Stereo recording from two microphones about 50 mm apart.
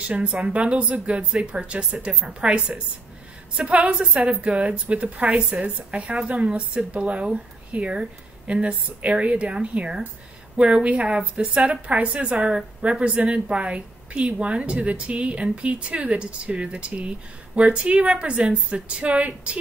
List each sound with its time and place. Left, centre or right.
0.0 s a woman's voice: right